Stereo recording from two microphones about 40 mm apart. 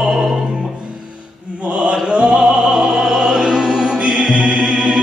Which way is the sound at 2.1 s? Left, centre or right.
Right.